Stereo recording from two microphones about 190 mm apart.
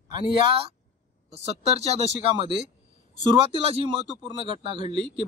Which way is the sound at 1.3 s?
35° right (ahead or behind).